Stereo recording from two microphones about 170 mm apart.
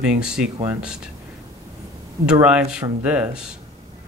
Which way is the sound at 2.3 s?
5° right (ahead or behind).